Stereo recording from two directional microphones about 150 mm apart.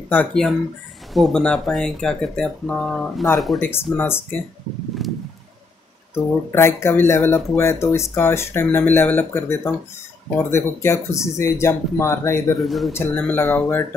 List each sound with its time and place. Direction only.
0.1 s speech: 10° left (ahead or behind)
3.9 s speech: 15° left (ahead or behind)
5.0 s a sound: centre (ahead or behind)
6.5 s speech: 15° left (ahead or behind)
12.5 s speech: centre (ahead or behind)
12.9 s speech: 15° left (ahead or behind)